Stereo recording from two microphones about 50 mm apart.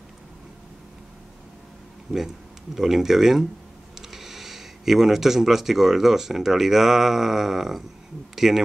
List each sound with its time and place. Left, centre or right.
2.1 s speech: centre